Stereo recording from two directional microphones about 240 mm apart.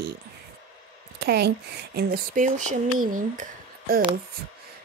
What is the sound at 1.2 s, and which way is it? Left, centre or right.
Speech, right.